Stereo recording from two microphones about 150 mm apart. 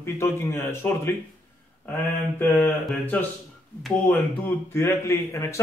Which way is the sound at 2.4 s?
15° left (ahead or behind).